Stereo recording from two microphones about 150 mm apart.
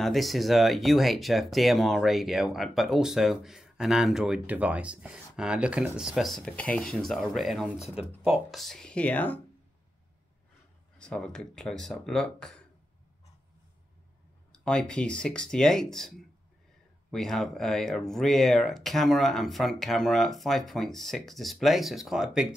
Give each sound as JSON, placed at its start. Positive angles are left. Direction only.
{"t": 0.0, "sound": "speech", "side_deg": 0}
{"t": 11.0, "sound": "speech", "side_deg": 5}
{"t": 14.5, "sound": "speech", "side_deg": 5}